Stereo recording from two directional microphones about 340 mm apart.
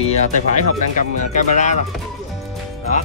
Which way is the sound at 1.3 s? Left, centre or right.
Left.